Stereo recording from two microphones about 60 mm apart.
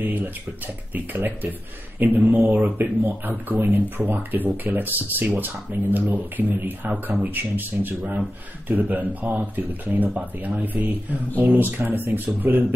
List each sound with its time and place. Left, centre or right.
0.0 s speech: right